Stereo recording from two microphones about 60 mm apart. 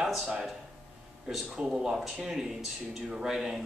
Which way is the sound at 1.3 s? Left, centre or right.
Centre.